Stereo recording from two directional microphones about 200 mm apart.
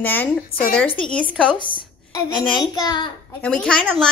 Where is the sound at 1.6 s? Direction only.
20° left (ahead or behind).